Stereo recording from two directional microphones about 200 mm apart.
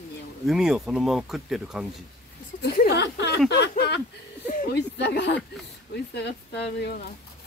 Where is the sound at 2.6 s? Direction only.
55° left (ahead or behind).